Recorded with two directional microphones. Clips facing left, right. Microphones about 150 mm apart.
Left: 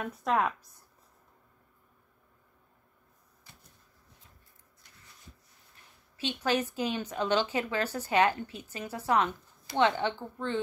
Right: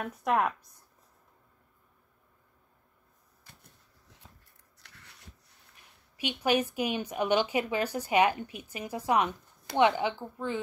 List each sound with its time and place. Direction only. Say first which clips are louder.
0.0 s speech: right 1 dB; 10° right (ahead or behind)
4.7 s a sound: right 3 dB; 75° right (ahead or behind)
6.1 s speech: right 2 dB; 15° right (ahead or behind)